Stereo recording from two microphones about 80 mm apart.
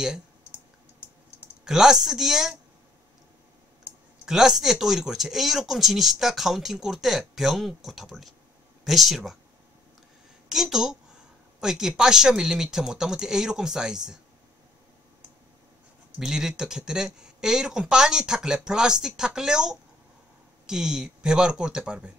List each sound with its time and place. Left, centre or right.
0.0 s clicking: centre
1.0 s typing: centre
1.7 s speech: centre
4.3 s speech: centre
10.5 s speech: centre
16.2 s speech: centre